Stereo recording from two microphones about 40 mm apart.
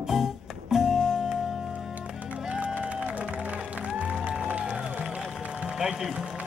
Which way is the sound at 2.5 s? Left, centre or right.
Right.